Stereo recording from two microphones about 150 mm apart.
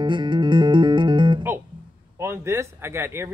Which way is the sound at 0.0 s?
35° right (ahead or behind).